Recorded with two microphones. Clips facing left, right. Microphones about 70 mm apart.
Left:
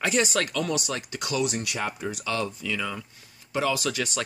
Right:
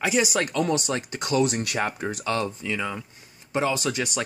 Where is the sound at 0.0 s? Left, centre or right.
Centre.